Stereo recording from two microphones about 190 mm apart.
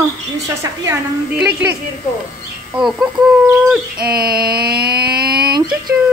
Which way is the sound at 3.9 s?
50° right (ahead or behind).